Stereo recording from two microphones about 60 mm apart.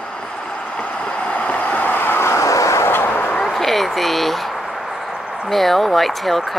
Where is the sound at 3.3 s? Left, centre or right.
Centre.